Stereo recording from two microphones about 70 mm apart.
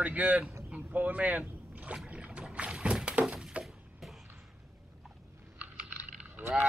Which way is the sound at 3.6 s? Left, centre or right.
Centre.